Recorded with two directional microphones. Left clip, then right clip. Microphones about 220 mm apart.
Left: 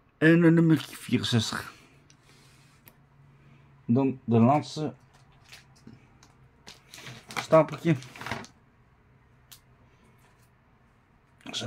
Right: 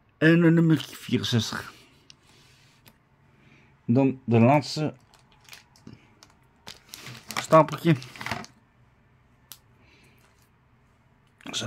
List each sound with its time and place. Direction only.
0.2 s speech: 5° right (ahead or behind)
3.8 s speech: 30° right (ahead or behind)
7.4 s speech: 20° right (ahead or behind)
11.3 s a sound: 20° right (ahead or behind)